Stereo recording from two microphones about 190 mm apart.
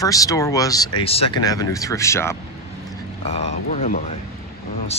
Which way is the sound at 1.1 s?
30° left (ahead or behind).